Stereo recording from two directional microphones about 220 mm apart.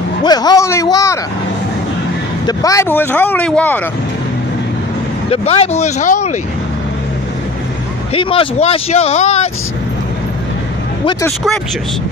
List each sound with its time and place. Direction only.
0.2 s a sound: 20° left (ahead or behind)
2.4 s speech: 15° left (ahead or behind)
5.3 s speech: 30° left (ahead or behind)
8.1 s speech: 25° left (ahead or behind)
11.1 s speech: 15° left (ahead or behind)